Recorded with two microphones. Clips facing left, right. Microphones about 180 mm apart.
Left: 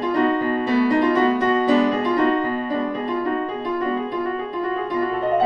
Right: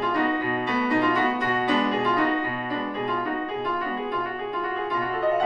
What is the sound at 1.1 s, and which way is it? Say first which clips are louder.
Music: left 7 dB; 35° left (ahead or behind).